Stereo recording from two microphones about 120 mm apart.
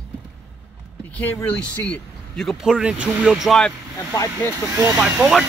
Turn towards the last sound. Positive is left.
turn(degrees=-5)  # may be behind; listen again after turning